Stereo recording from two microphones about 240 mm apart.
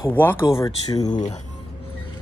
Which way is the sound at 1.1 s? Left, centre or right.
Left.